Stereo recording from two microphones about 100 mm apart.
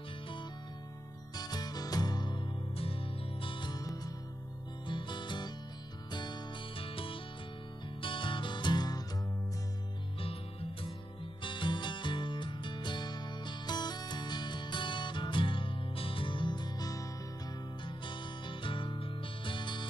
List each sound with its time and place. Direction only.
1.3 s music: 40° left (ahead or behind)
2.8 s music: 65° left (ahead or behind); by 4.1 s 40° left (ahead or behind)
4.8 s music: 50° left (ahead or behind)
11.4 s music: 55° left (ahead or behind); by 17.1 s 35° left (ahead or behind)
17.8 s music: 55° left (ahead or behind)